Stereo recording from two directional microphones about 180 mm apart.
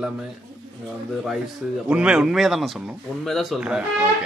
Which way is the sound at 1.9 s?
5° right (ahead or behind).